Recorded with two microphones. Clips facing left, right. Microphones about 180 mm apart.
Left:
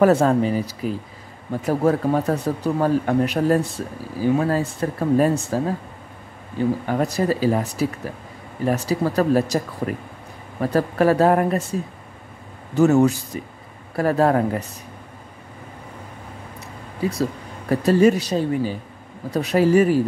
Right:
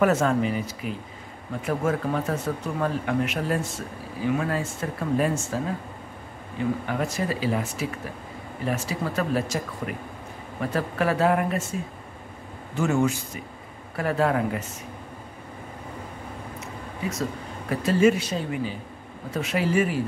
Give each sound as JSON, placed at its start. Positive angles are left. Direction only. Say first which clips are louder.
{"t": 0.0, "sound": "speech", "louder": "left 5 dB", "side_deg": 35}
{"t": 6.9, "sound": "speech", "louder": "left 6 dB", "side_deg": 35}
{"t": 12.7, "sound": "speech", "louder": "left 8 dB", "side_deg": 40}
{"t": 16.5, "sound": "speech", "louder": "left 1 dB", "side_deg": 35}